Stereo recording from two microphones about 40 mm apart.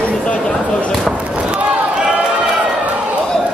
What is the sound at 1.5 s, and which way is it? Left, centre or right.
Slam, right.